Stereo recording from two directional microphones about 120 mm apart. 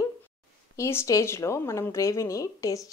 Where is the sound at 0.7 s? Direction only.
20° left (ahead or behind).